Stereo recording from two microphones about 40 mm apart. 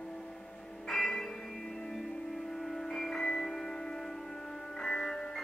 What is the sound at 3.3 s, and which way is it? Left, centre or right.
Music, centre.